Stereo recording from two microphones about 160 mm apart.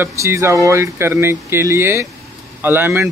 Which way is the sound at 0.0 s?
20° right (ahead or behind).